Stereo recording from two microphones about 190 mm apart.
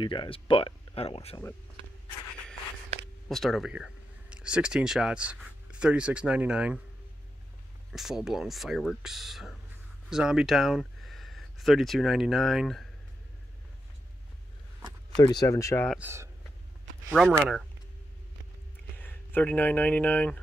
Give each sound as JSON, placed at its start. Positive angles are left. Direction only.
{"t": 0.0, "sound": "speech", "side_deg": 25}
{"t": 3.3, "sound": "speech", "side_deg": 0}
{"t": 7.9, "sound": "speech", "side_deg": 0}
{"t": 15.1, "sound": "speech", "side_deg": 20}
{"t": 15.9, "sound": "speech", "side_deg": -10}
{"t": 17.1, "sound": "speech", "side_deg": 0}
{"t": 18.9, "sound": "speech", "side_deg": 10}